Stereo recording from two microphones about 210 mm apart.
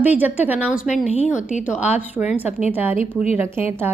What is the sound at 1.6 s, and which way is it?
A woman's voice, 5° right (ahead or behind).